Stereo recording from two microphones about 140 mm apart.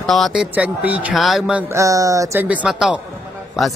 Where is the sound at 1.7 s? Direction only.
25° right (ahead or behind).